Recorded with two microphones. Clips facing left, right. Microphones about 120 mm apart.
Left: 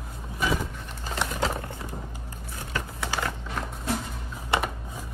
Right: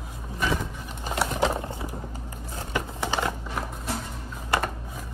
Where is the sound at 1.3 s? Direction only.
20° right (ahead or behind).